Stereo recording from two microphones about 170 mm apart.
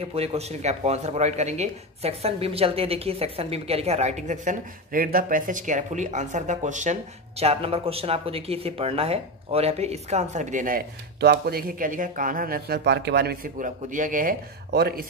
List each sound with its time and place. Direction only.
0.0 s speech: 35° right (ahead or behind)
11.1 s speech: 70° right (ahead or behind)